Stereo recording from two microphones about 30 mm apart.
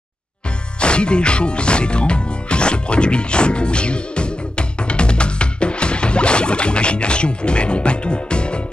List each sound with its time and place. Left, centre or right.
0.7 s music: left